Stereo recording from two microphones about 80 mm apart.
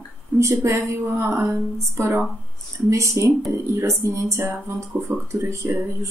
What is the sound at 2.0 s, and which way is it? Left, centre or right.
Speech, right.